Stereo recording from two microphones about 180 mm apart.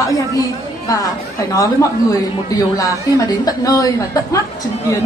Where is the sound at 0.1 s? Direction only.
20° left (ahead or behind).